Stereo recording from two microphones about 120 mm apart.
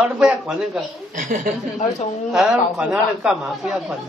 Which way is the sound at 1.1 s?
90° right.